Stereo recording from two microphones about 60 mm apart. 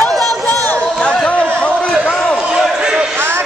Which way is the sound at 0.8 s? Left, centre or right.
Centre.